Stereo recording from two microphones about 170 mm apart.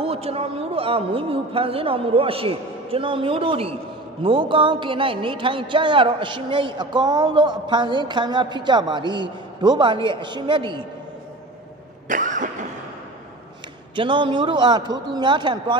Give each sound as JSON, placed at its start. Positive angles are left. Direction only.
{"t": 0.0, "sound": "a man's voice", "side_deg": -35}
{"t": 12.1, "sound": "vehicle", "side_deg": -50}
{"t": 13.9, "sound": "a man's voice", "side_deg": -30}